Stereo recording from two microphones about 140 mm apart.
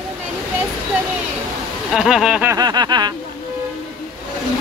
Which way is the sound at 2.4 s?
25° right (ahead or behind).